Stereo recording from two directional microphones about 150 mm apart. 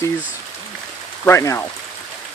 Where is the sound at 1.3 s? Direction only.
20° left (ahead or behind).